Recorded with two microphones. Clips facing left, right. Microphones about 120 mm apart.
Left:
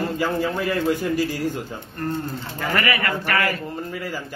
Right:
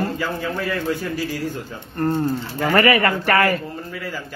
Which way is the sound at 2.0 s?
40° right (ahead or behind).